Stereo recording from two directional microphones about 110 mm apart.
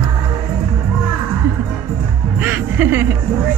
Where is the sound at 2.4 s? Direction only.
15° right (ahead or behind).